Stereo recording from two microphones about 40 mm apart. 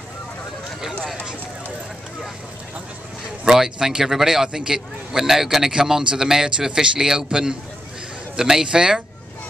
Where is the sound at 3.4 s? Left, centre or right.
Centre.